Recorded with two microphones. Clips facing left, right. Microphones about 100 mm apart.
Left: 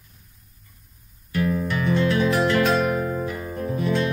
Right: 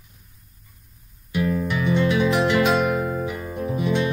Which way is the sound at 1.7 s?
15° right (ahead or behind).